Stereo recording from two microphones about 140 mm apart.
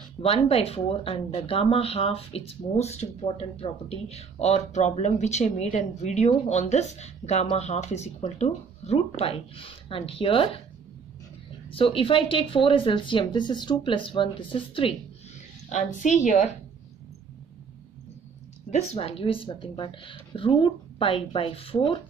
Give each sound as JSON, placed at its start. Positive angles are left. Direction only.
{"t": 0.2, "sound": "speech", "side_deg": 45}
{"t": 11.7, "sound": "speech", "side_deg": 40}
{"t": 15.7, "sound": "a woman's voice", "side_deg": 60}
{"t": 18.7, "sound": "speech", "side_deg": 50}